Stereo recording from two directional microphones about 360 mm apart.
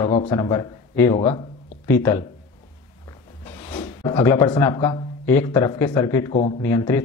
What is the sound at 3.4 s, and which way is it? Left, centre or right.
Speech, centre.